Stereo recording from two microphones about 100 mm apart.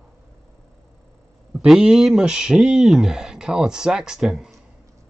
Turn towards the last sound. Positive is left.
turn(degrees=0)  # may be behind; listen again after turning